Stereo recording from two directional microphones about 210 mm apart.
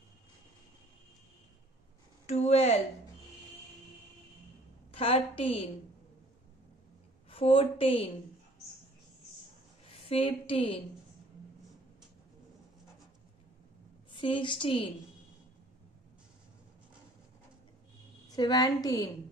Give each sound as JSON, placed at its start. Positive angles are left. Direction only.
{"t": 2.2, "sound": "speech", "side_deg": 30}
{"t": 4.9, "sound": "a woman's voice", "side_deg": 25}
{"t": 7.2, "sound": "a woman's voice", "side_deg": 25}
{"t": 9.8, "sound": "a woman's voice", "side_deg": 25}
{"t": 14.1, "sound": "a woman's voice", "side_deg": 25}
{"t": 18.3, "sound": "a woman's voice", "side_deg": 20}